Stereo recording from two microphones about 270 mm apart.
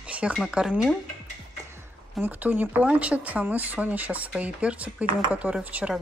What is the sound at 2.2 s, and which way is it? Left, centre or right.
Speech, centre.